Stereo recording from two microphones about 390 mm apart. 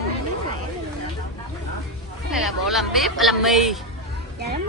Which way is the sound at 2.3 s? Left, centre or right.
Centre.